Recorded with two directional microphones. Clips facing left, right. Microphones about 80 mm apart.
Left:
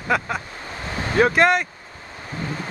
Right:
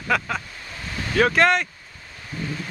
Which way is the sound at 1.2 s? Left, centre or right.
Centre.